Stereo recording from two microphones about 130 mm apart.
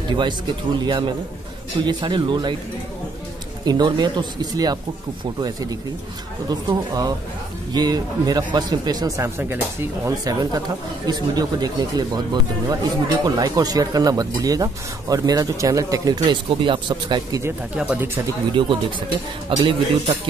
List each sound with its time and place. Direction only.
0.1 s speech: 35° right (ahead or behind)
3.6 s speech: 35° right (ahead or behind)
17.7 s speech: 10° right (ahead or behind)
18.5 s speech: 40° right (ahead or behind)
19.5 s speech: 50° right (ahead or behind)